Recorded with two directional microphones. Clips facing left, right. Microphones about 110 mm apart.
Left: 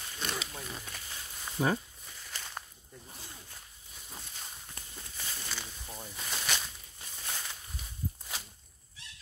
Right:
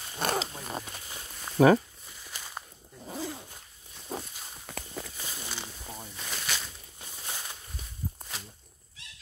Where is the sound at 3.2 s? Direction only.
90° right.